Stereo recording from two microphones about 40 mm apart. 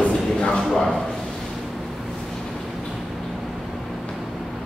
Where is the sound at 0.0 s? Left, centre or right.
Left.